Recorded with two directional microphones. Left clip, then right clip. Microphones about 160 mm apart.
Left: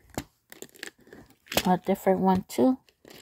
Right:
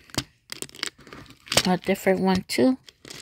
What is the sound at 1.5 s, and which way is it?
Speech, 15° right (ahead or behind).